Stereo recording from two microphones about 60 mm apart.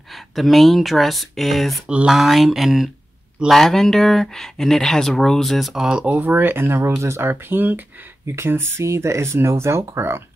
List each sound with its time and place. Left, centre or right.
0.1 s speech: centre
6.0 s speech: right
8.3 s speech: right